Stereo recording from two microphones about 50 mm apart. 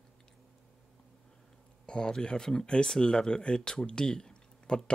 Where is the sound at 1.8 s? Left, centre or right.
Centre.